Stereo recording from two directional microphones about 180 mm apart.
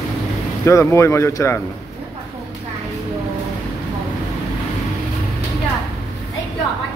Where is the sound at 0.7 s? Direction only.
15° left (ahead or behind).